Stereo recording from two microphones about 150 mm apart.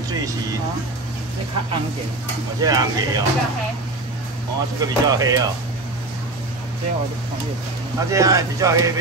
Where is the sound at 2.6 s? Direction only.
25° right (ahead or behind).